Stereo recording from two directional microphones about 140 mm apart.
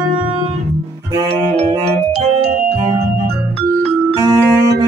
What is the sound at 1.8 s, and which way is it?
Music, 45° right (ahead or behind).